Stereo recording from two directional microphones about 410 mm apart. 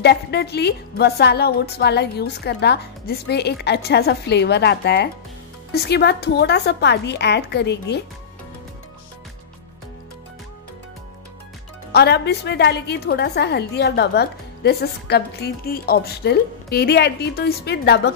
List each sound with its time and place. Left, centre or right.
0.0 s a woman's voice: left
11.9 s a woman's voice: left